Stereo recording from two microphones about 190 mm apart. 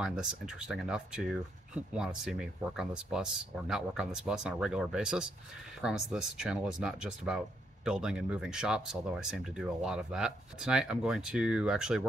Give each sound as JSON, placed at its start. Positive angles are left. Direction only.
{"t": 0.0, "sound": "speech", "side_deg": -5}